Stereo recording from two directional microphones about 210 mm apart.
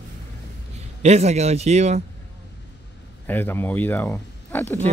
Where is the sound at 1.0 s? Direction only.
30° right (ahead or behind).